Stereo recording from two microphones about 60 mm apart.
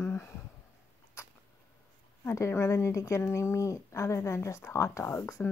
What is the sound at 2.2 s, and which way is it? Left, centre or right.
Speech, left.